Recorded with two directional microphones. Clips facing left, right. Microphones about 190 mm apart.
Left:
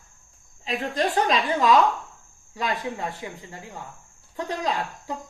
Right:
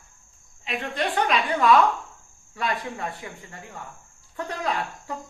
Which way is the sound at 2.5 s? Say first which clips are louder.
Left 1 dB; 20° left (ahead or behind).